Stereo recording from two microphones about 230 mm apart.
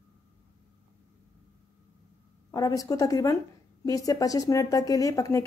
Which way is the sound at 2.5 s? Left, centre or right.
Centre.